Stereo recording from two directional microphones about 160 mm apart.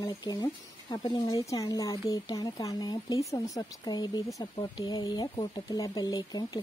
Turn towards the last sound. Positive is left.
turn(degrees=25)  # may be behind; listen again after turning